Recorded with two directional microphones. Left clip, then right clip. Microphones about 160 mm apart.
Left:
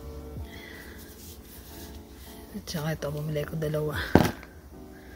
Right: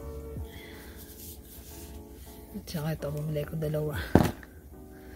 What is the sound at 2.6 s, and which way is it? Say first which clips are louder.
Speech: left 3 dB; 10° right (ahead or behind).